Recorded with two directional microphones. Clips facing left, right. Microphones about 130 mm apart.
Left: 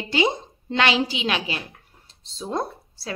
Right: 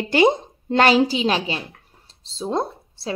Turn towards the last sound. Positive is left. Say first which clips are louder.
# right 4 dB
turn(degrees=-25)  # may be behind; listen again after turning